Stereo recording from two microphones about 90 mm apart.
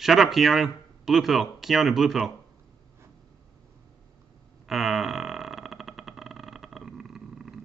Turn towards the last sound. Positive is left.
turn(degrees=-5)  # may be behind; listen again after turning